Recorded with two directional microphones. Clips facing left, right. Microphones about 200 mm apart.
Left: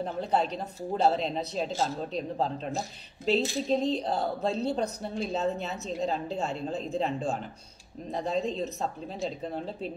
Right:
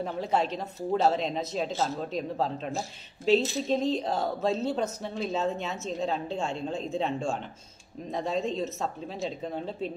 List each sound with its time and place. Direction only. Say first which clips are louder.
0.0 s speech: even; centre (ahead or behind)
3.3 s speech: right 2 dB; centre (ahead or behind)
4.6 s speech: even; 35° left (ahead or behind)
5.3 s speech: even; centre (ahead or behind)